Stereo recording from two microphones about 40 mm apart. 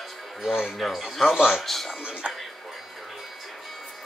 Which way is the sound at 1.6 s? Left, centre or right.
Centre.